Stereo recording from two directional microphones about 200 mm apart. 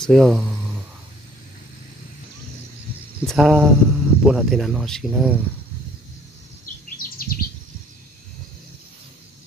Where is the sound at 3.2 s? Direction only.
Centre (ahead or behind).